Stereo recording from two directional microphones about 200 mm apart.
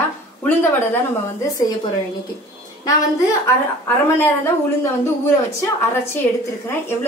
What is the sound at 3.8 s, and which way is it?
Speech, 10° left (ahead or behind).